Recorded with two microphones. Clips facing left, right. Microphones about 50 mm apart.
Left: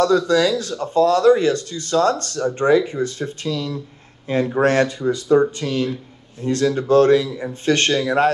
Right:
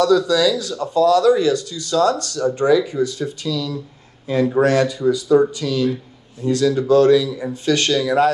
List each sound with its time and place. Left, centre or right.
0.0 s speech: left